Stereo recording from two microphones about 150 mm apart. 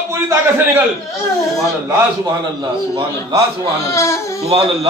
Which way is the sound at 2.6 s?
30° right (ahead or behind).